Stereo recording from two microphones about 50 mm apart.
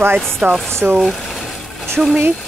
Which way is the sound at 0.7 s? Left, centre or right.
Right.